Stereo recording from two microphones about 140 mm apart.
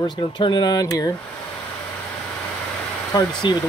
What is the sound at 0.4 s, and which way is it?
Speech, 30° left (ahead or behind).